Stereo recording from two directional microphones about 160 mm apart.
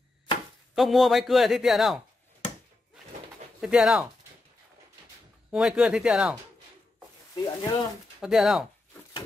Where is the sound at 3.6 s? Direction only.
5° right (ahead or behind).